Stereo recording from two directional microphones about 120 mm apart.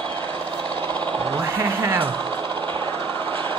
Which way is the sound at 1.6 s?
20° right (ahead or behind).